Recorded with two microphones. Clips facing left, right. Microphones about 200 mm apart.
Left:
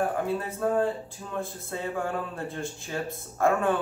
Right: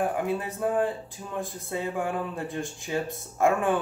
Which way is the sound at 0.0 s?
15° right (ahead or behind).